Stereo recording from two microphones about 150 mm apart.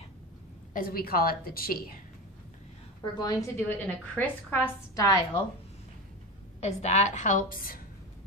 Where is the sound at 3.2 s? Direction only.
25° left (ahead or behind).